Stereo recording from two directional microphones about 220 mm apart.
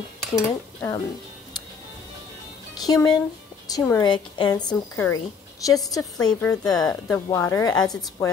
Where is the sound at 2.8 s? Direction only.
15° left (ahead or behind).